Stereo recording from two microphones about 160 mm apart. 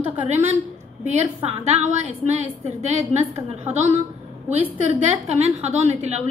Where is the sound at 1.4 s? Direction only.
45° right (ahead or behind).